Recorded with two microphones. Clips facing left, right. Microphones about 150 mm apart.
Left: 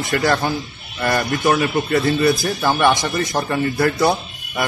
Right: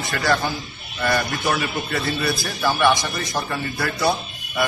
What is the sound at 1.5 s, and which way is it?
Speech, 45° left (ahead or behind).